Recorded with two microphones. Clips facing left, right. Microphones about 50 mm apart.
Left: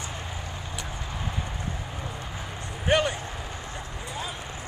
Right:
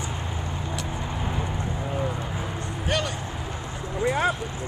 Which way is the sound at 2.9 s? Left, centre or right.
Left.